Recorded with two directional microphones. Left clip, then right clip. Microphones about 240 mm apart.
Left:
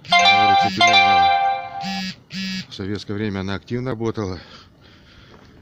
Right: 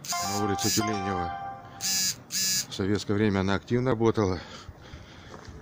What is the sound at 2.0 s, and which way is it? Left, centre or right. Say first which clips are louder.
Buzzer: right 1 dB; right.